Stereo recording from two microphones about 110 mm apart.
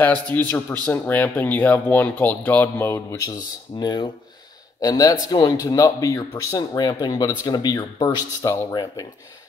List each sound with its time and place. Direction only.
0.0 s speech: 15° left (ahead or behind)
3.2 s speech: 35° left (ahead or behind)